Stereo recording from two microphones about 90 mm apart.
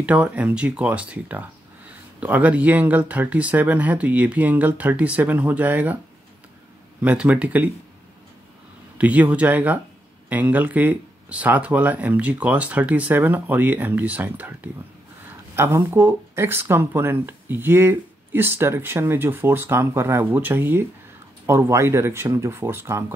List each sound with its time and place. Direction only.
0.0 s speech: 15° right (ahead or behind)
7.0 s speech: 15° right (ahead or behind)
8.9 s speech: 15° right (ahead or behind)